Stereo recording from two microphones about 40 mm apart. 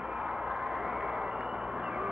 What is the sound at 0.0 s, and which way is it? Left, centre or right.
Vehicle, right.